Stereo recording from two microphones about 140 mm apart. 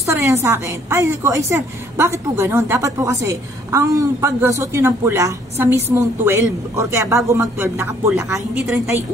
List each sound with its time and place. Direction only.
0.0 s a woman's voice: 20° right (ahead or behind)